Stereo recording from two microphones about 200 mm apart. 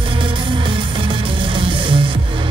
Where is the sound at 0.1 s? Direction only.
25° right (ahead or behind).